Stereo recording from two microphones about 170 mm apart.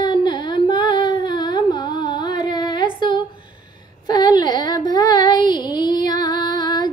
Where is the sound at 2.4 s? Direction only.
25° left (ahead or behind).